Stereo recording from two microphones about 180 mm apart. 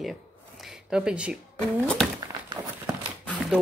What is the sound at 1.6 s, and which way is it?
Speech, 5° left (ahead or behind).